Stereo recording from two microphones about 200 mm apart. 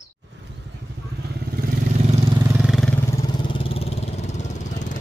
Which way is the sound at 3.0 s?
20° left (ahead or behind).